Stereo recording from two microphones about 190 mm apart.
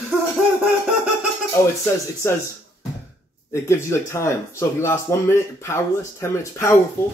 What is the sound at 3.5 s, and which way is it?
Speech, 15° left (ahead or behind).